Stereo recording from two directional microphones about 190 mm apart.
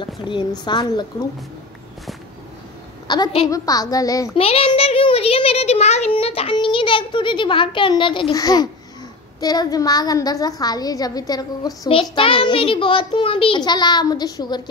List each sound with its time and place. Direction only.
0.0 s a woman's voice: 25° left (ahead or behind)
3.1 s a woman's voice: 20° left (ahead or behind)
4.4 s a woman's voice: 30° left (ahead or behind)